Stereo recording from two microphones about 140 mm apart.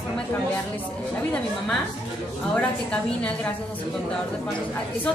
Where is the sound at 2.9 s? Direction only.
10° left (ahead or behind).